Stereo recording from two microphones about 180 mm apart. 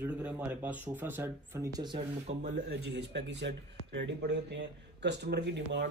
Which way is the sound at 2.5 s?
70° right (ahead or behind).